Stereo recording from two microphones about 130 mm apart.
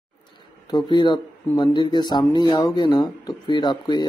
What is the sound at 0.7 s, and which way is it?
Speech, 35° left (ahead or behind).